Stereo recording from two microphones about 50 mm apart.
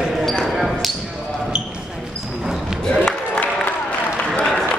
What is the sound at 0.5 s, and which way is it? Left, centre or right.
Basketball bounce, centre.